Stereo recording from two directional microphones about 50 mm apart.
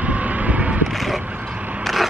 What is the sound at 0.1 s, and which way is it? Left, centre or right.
Vehicle, right.